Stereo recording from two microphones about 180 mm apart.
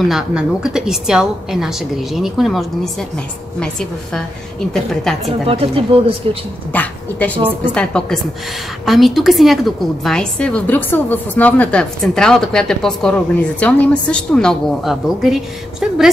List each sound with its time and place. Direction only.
0.1 s a woman's voice: 5° right (ahead or behind)
5.2 s speech: 30° right (ahead or behind)
6.7 s a woman's voice: 10° left (ahead or behind)